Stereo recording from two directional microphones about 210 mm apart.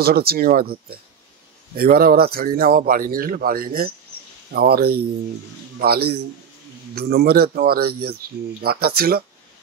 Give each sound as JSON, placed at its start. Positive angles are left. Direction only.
{"t": 0.0, "sound": "speech", "side_deg": -45}